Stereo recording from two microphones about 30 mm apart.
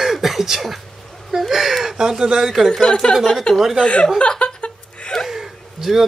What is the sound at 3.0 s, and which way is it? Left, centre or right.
Speech, left.